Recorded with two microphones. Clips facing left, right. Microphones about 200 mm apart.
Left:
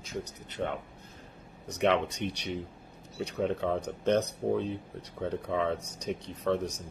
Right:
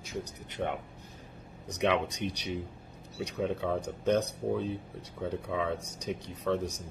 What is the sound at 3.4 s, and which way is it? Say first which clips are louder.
Speech: left 2 dB; 5° right (ahead or behind).